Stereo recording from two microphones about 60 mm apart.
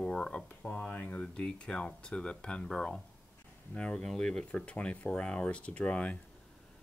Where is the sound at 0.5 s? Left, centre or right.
Left.